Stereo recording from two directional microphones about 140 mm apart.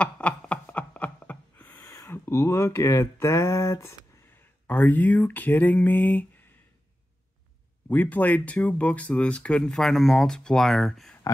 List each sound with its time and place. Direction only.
0.0 s a sound: 10° left (ahead or behind)
1.8 s speech: 20° left (ahead or behind)
7.9 s speech: 10° left (ahead or behind)